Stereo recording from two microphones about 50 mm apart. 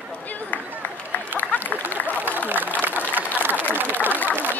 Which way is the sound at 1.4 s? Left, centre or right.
Left.